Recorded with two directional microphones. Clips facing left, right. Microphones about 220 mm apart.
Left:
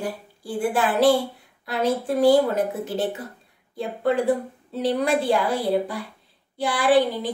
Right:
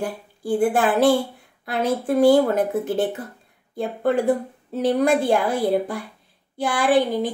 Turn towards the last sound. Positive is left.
turn(degrees=-50)  # may be behind; listen again after turning